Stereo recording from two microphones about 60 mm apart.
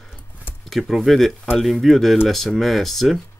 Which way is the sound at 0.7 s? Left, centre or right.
Centre.